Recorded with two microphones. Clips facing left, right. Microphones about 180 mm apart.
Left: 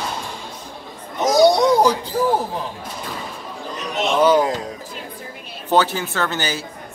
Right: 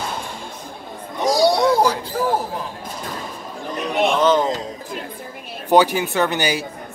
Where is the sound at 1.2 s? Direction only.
20° left (ahead or behind).